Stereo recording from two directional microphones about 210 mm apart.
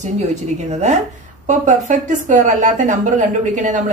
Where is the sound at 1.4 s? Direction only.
35° right (ahead or behind).